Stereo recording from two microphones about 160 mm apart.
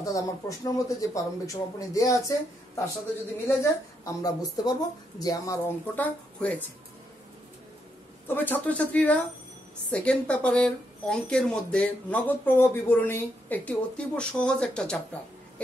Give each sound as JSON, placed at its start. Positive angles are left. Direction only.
{"t": 0.0, "sound": "speech", "side_deg": 20}
{"t": 5.9, "sound": "a woman's voice", "side_deg": 10}
{"t": 8.3, "sound": "a woman's voice", "side_deg": 10}